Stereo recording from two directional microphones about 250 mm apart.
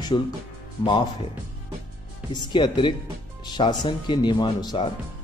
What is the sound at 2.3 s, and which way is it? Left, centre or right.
Speech, centre.